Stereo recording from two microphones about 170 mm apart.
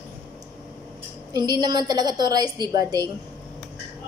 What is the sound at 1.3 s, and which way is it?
Speech, 25° right (ahead or behind).